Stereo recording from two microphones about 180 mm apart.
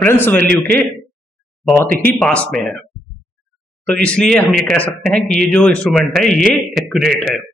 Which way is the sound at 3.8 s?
5° left (ahead or behind).